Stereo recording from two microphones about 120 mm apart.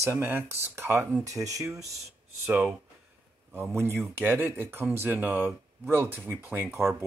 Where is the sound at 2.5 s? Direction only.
10° right (ahead or behind).